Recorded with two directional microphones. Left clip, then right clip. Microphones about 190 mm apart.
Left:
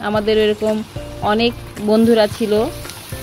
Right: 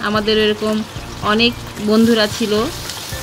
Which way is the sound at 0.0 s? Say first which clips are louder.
Even; 25° left (ahead or behind).